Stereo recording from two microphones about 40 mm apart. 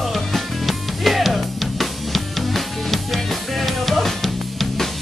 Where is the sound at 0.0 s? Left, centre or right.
Centre.